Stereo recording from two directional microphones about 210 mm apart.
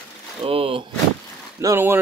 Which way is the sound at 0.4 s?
25° right (ahead or behind).